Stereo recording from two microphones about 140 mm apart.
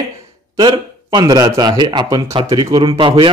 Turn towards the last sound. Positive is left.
turn(degrees=-35)  # may be behind; listen again after turning